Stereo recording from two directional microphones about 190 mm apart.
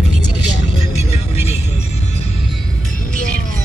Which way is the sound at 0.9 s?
35° left (ahead or behind).